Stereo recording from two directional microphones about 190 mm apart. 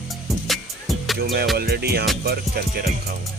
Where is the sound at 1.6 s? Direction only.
55° right (ahead or behind).